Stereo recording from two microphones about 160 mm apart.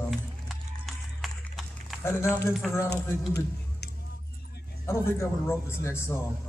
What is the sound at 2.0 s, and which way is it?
Speech, 15° left (ahead or behind).